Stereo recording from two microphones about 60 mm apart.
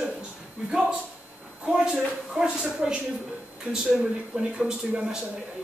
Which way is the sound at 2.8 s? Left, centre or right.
Centre.